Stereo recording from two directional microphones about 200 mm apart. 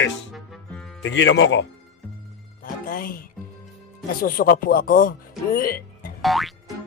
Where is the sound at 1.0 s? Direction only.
65° left (ahead or behind).